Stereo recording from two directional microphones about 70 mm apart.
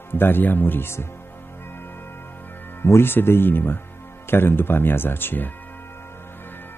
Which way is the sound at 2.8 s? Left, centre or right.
Left.